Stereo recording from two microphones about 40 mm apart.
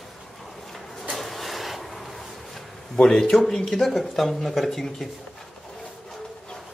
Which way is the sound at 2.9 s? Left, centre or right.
Centre.